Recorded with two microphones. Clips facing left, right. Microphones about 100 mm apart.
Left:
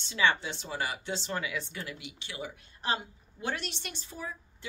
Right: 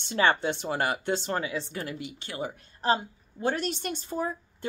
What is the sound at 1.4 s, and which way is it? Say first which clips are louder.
Speech: right 4 dB; 35° right (ahead or behind).